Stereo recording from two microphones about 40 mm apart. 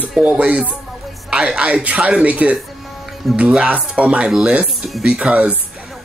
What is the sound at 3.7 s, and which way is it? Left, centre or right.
Speech, right.